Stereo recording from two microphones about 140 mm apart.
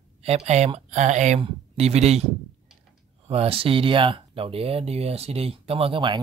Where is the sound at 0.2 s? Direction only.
50° right (ahead or behind).